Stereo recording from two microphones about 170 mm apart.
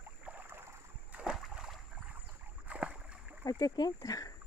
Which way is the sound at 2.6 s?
5° right (ahead or behind).